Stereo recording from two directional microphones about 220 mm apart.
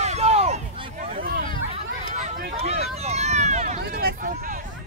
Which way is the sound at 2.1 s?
30° right (ahead or behind).